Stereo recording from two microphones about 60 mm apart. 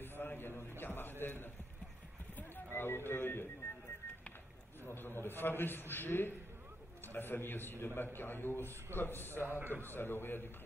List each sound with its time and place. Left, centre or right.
0.2 s a sound: left
1.2 s run: left
2.3 s a sound: left
3.1 s music: left
4.8 s a man's voice: left
9.3 s a man's voice: right
9.8 s a man's voice: left